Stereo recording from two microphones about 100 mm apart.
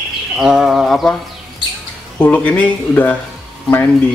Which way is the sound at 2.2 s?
15° left (ahead or behind).